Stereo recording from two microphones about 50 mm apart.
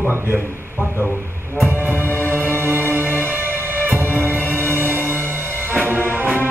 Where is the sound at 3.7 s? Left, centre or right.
Right.